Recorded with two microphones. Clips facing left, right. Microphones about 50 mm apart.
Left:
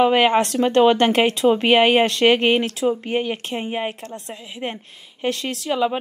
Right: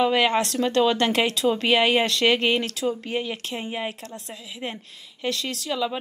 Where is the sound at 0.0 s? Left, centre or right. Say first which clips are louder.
Left 5 dB; left.